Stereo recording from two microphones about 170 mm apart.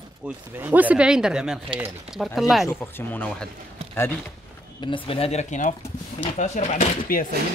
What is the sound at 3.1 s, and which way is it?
Speech, 10° left (ahead or behind).